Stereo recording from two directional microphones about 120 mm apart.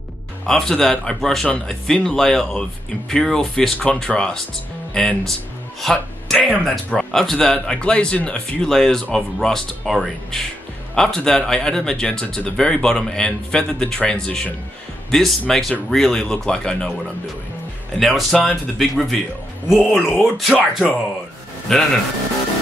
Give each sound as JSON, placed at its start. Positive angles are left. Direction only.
{"t": 0.5, "sound": "speech", "side_deg": 5}
{"t": 17.9, "sound": "speech", "side_deg": 0}
{"t": 20.5, "sound": "speech", "side_deg": 15}
{"t": 21.7, "sound": "speech", "side_deg": 0}